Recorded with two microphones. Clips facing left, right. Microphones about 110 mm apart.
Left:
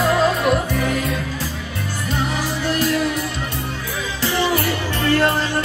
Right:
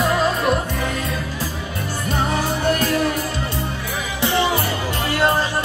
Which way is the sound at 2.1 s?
45° right (ahead or behind).